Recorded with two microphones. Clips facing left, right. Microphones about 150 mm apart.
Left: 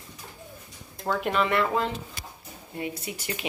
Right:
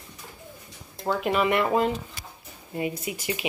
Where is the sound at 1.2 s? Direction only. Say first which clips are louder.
Right 2 dB; 10° right (ahead or behind).